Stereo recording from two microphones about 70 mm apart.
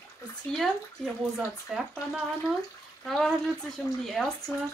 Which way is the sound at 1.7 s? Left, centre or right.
Centre.